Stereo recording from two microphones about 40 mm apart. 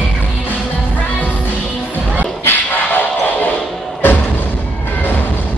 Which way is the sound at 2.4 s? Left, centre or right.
Left.